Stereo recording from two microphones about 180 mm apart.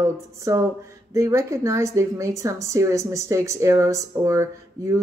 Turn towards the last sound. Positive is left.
turn(degrees=-15)  # may be behind; listen again after turning